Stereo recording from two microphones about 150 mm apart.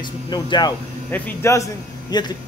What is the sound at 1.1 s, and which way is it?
Speech, 15° left (ahead or behind).